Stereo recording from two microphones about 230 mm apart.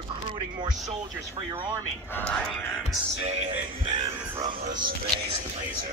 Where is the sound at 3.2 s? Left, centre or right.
Right.